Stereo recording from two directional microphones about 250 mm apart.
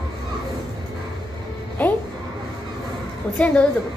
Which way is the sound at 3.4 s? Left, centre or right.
Centre.